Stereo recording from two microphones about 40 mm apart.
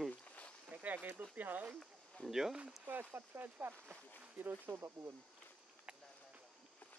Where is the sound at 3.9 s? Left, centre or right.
Left.